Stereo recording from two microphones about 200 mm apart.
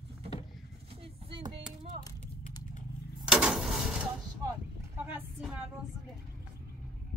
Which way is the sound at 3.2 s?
5° right (ahead or behind).